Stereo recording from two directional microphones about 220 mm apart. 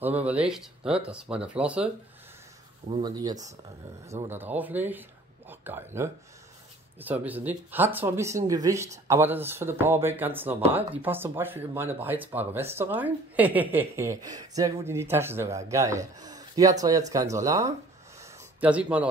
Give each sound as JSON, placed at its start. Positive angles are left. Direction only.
{"t": 0.0, "sound": "speech", "side_deg": -5}
{"t": 2.9, "sound": "speech", "side_deg": -20}
{"t": 18.2, "sound": "a sound", "side_deg": -5}